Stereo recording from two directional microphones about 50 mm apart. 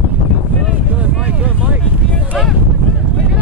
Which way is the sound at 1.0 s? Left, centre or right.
Right.